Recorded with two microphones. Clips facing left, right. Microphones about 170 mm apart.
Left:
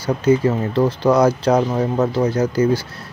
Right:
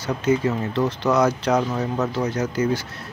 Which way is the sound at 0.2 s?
30° left (ahead or behind).